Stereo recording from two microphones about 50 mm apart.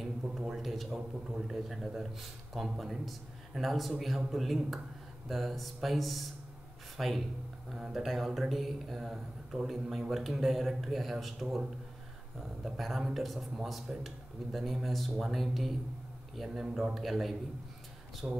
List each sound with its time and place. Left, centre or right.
0.4 s a man's voice: centre
12.6 s a man's voice: centre
18.2 s speech: right